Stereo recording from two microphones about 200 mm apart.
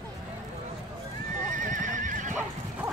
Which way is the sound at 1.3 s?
40° right (ahead or behind).